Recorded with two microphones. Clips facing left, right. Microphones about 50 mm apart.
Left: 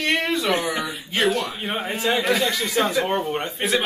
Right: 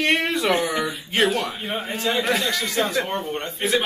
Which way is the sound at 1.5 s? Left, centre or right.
Centre.